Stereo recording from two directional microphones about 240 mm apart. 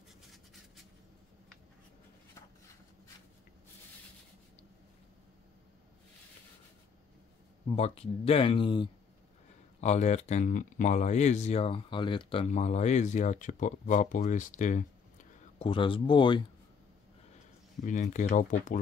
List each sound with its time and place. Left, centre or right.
7.7 s speech: left
15.6 s speech: left
17.8 s speech: left